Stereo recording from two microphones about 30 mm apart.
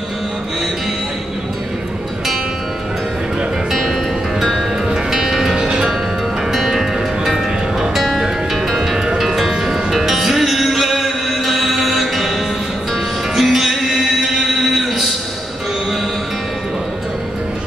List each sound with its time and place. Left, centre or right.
3.7 s music: centre
4.8 s music: centre
5.6 s music: right
6.5 s music: centre
8.7 s music: centre
13.4 s music: centre